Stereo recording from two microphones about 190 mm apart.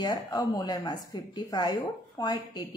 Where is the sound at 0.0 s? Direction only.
20° left (ahead or behind).